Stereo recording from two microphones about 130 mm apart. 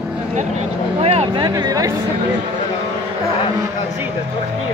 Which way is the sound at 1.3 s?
30° right (ahead or behind).